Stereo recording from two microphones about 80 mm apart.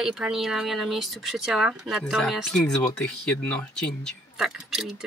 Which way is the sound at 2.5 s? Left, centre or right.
Centre.